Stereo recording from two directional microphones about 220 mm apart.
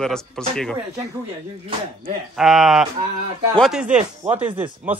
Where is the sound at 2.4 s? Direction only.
Centre (ahead or behind).